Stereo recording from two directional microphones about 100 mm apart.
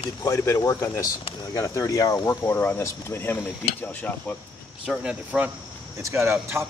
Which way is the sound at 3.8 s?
15° left (ahead or behind).